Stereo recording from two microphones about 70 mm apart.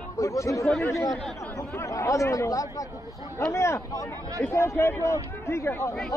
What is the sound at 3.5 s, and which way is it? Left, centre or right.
Speech, left.